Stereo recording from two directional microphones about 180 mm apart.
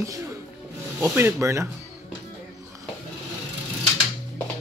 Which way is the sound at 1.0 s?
15° right (ahead or behind).